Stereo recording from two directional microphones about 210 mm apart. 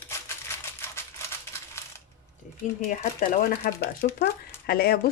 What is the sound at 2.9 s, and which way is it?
Speech, 40° left (ahead or behind).